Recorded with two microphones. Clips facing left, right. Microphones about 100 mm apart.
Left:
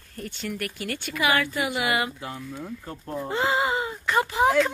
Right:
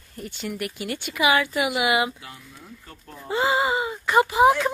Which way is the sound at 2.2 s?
30° left (ahead or behind).